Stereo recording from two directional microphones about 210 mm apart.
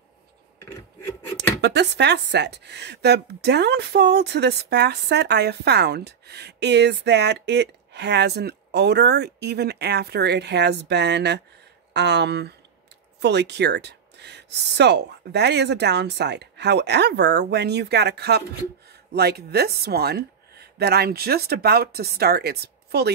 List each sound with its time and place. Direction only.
0.7 s filing: 10° left (ahead or behind)
1.6 s speech: 55° right (ahead or behind)